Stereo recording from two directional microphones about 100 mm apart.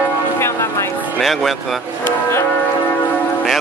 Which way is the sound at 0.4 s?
25° left (ahead or behind).